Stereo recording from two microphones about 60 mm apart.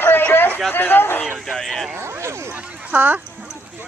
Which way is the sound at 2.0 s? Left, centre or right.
Right.